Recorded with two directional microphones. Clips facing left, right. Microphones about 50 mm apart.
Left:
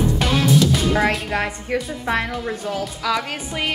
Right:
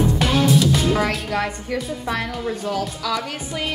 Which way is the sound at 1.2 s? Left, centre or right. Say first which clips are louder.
Even; left.